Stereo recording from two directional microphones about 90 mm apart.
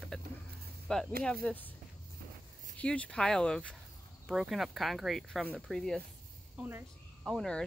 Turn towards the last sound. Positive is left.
turn(degrees=5)  # may be behind; listen again after turning